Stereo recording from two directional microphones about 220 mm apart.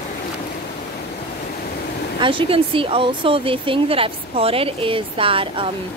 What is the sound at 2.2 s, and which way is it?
Speech, 25° right (ahead or behind).